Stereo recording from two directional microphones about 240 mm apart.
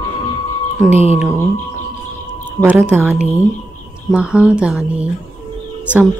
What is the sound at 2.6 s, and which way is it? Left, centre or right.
Speech, centre.